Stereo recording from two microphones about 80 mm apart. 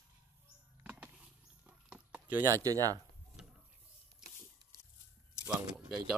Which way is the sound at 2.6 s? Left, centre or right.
Right.